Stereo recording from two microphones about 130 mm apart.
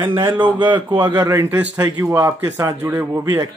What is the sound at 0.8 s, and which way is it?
Speech, 30° right (ahead or behind).